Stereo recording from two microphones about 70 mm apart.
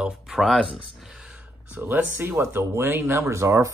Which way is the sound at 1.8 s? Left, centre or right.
Right.